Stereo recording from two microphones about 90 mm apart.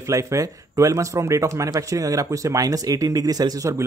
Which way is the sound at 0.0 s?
35° right (ahead or behind).